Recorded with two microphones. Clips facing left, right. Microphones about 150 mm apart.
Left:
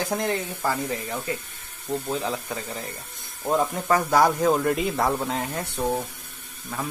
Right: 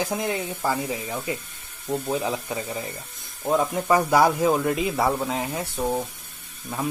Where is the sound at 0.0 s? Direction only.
10° right (ahead or behind).